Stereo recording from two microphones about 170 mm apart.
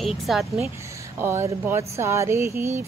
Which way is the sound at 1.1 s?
15° right (ahead or behind).